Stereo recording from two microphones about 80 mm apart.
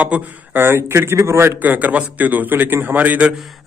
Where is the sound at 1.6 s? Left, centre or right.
Centre.